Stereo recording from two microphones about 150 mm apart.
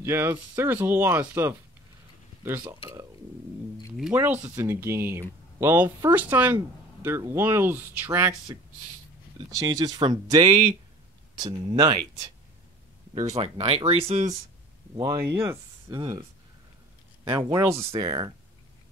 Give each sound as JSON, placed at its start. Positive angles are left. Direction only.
{"t": 0.0, "sound": "speech", "side_deg": -15}
{"t": 4.1, "sound": "speech", "side_deg": -10}
{"t": 9.6, "sound": "speech", "side_deg": -25}
{"t": 13.4, "sound": "speech", "side_deg": -40}
{"t": 15.0, "sound": "speech", "side_deg": -20}
{"t": 16.0, "sound": "speech", "side_deg": -30}
{"t": 17.2, "sound": "speech", "side_deg": -20}